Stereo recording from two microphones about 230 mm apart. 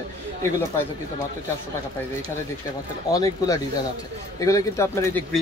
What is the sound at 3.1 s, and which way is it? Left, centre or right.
Speech, centre.